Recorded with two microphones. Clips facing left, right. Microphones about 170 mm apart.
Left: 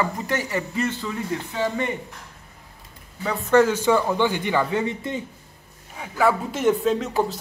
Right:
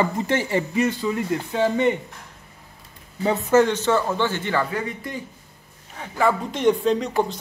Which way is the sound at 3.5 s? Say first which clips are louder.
Left 1 dB; 5° left (ahead or behind).